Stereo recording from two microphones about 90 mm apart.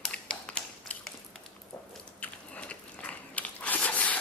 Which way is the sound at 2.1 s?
15° left (ahead or behind).